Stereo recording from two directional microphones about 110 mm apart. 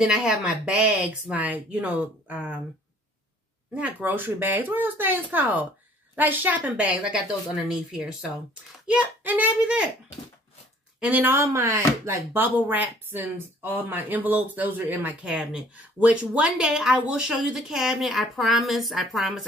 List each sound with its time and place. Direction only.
0.0 s speech: 5° right (ahead or behind)
3.7 s speech: 15° right (ahead or behind)
11.0 s speech: 15° right (ahead or behind)
11.3 s a woman's voice: 25° right (ahead or behind); by 19.4 s centre (ahead or behind)